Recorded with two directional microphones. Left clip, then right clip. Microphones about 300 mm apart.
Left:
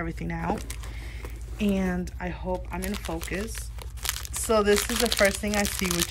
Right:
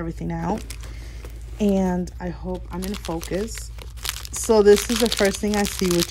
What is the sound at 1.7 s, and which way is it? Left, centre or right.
Speech, centre.